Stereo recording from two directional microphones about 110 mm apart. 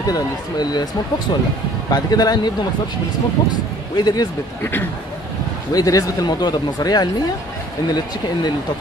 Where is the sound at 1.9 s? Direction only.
35° left (ahead or behind).